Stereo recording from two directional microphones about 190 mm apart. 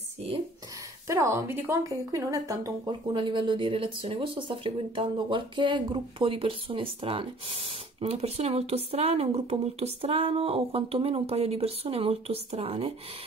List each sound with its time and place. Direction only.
1.0 s a woman's voice: 15° right (ahead or behind); by 12.9 s 30° right (ahead or behind)